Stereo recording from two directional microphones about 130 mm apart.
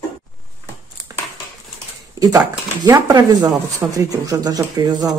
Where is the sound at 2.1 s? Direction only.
30° right (ahead or behind).